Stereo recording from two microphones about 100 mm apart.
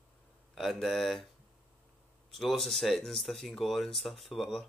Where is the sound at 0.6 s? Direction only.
Centre (ahead or behind).